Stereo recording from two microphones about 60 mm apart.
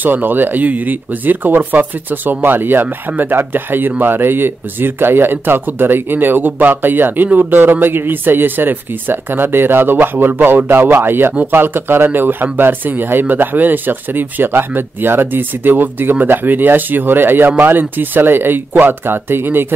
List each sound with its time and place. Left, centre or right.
0.0 s speech: right